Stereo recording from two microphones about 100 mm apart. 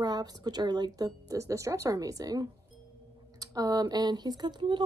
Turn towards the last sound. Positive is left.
turn(degrees=-50)  # may be behind; listen again after turning